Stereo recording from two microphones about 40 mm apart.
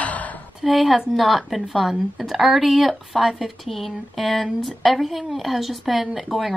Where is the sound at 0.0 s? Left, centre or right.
Left.